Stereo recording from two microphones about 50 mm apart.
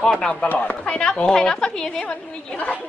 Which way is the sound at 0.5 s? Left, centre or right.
Left.